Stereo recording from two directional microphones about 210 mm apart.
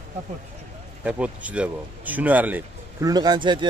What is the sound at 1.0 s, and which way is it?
Speech, 5° right (ahead or behind).